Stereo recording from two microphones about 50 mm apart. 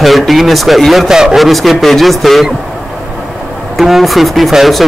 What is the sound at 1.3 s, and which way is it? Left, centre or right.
A man's voice, centre.